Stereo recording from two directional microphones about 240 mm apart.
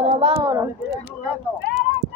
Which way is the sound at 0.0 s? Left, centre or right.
Right.